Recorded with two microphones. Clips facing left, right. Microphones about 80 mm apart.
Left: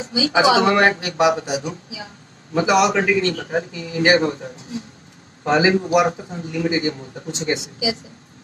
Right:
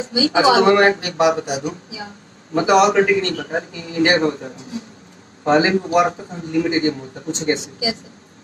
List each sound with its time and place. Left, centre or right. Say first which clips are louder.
0.0 s a man's voice: right 1 dB; right